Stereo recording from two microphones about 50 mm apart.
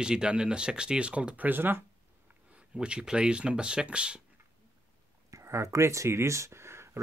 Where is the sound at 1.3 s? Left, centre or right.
Right.